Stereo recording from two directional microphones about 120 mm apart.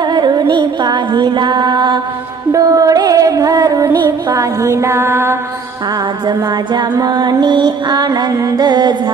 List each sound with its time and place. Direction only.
0.0 s music: 40° right (ahead or behind); by 5.4 s 20° right (ahead or behind)
6.2 s music: 35° right (ahead or behind)